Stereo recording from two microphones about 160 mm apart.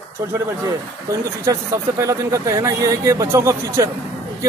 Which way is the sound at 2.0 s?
20° right (ahead or behind).